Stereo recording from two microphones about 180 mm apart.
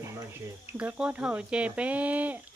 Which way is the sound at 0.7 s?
5° right (ahead or behind).